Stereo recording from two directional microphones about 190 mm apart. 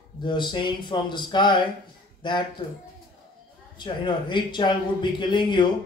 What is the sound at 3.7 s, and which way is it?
A man's voice, 25° left (ahead or behind).